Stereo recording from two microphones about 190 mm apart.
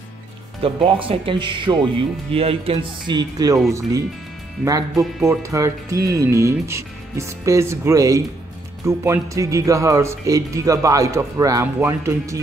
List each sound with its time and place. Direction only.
0.6 s speech: 30° right (ahead or behind)
4.6 s speech: 15° right (ahead or behind)